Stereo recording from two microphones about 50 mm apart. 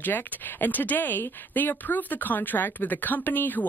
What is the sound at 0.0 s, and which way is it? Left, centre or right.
Speech, left.